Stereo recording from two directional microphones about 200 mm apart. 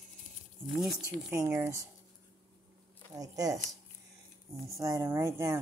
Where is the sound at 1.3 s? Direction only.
15° right (ahead or behind).